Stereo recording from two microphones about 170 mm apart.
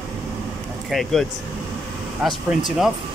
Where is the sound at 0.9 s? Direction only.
Centre (ahead or behind).